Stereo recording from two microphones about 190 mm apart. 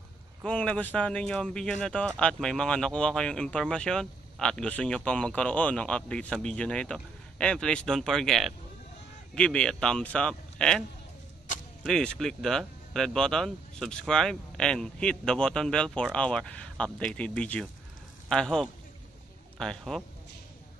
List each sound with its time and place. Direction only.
0.4 s speech: 5° left (ahead or behind)
11.8 s speech: centre (ahead or behind)